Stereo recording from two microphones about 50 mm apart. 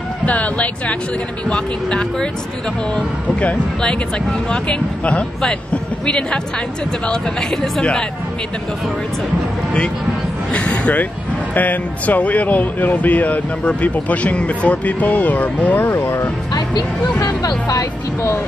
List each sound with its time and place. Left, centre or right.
0.2 s speech: left
4.5 s speech: centre
10.5 s speech: left
15.9 s speech: left